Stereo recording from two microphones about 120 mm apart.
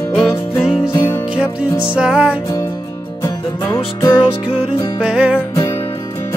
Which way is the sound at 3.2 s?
25° left (ahead or behind).